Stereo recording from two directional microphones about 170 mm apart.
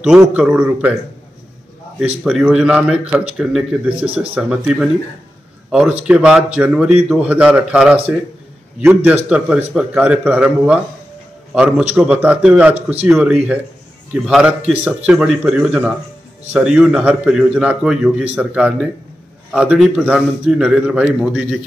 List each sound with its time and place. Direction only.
0.2 s a man's voice: 5° right (ahead or behind)
2.0 s a man's voice: 5° right (ahead or behind)
4.0 s speech: 35° right (ahead or behind)
4.4 s a man's voice: 5° right (ahead or behind)